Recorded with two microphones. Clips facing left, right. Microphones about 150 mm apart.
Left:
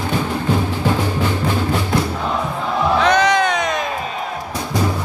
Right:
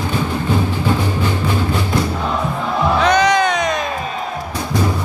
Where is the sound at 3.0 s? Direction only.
Centre (ahead or behind).